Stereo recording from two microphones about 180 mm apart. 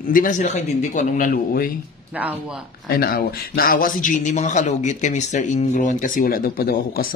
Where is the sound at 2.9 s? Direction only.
60° left (ahead or behind).